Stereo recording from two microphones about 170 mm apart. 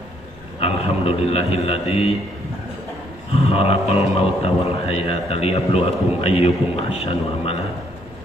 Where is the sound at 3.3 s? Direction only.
35° left (ahead or behind).